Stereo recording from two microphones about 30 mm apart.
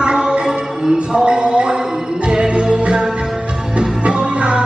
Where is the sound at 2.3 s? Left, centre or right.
Right.